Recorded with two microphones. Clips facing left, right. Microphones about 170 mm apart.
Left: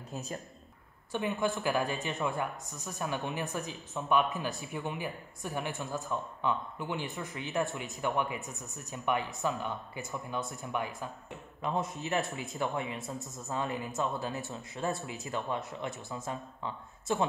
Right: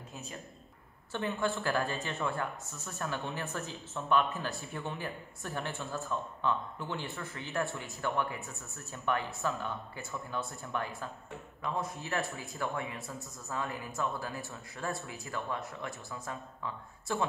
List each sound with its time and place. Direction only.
0.1 s speech: 40° left (ahead or behind)
1.1 s a woman's voice: 15° left (ahead or behind)